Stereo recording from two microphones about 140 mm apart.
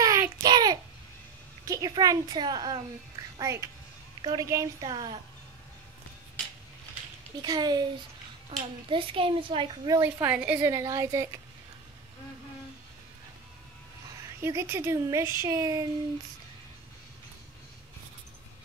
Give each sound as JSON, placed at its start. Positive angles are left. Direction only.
{"t": 0.0, "sound": "a sound", "side_deg": -25}
{"t": 1.7, "sound": "a child's voice", "side_deg": -25}
{"t": 7.4, "sound": "a woman's voice", "side_deg": -30}
{"t": 8.5, "sound": "a child's voice", "side_deg": -40}
{"t": 9.8, "sound": "a woman's voice", "side_deg": -25}
{"t": 10.2, "sound": "a woman's voice", "side_deg": -10}
{"t": 10.6, "sound": "a woman's voice", "side_deg": -25}
{"t": 14.4, "sound": "a woman's voice", "side_deg": -20}